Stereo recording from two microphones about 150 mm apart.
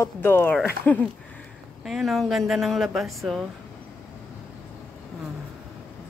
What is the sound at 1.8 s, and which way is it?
Speech, centre (ahead or behind).